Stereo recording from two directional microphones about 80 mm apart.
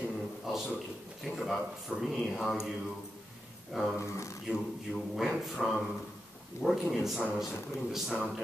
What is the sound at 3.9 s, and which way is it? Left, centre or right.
Speech, left.